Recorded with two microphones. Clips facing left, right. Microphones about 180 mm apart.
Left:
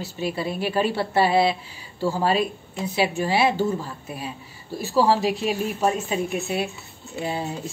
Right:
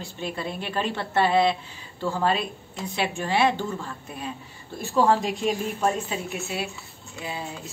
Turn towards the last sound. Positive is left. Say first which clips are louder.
# left 6 dB
turn(degrees=30)  # may be behind; listen again after turning